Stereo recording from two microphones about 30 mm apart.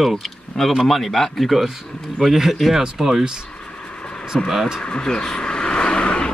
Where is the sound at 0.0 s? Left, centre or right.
Centre.